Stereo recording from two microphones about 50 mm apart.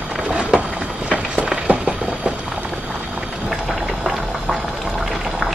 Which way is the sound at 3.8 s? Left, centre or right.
Centre.